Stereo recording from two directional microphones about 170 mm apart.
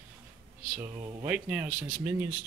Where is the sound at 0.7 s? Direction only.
10° right (ahead or behind).